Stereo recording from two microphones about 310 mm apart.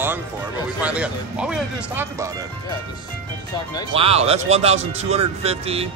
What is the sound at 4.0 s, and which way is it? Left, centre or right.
Speech, centre.